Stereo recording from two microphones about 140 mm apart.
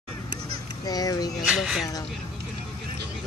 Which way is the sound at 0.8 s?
25° left (ahead or behind).